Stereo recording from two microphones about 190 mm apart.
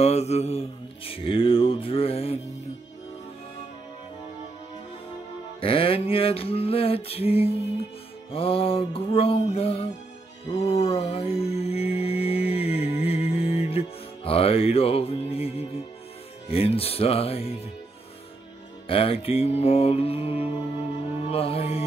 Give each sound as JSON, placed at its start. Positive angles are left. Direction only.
{"t": 0.0, "sound": "mantra", "side_deg": 35}
{"t": 5.6, "sound": "music", "side_deg": 30}
{"t": 16.4, "sound": "mantra", "side_deg": 30}
{"t": 18.9, "sound": "mantra", "side_deg": 30}